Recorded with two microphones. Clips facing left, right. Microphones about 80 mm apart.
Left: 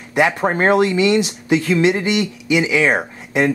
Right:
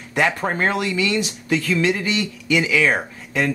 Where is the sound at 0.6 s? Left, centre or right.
Left.